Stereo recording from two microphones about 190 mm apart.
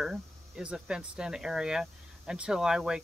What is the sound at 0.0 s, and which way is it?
Speech, 5° right (ahead or behind).